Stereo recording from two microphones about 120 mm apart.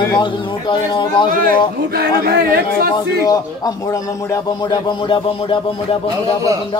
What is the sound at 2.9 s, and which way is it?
A man's voice, 30° left (ahead or behind).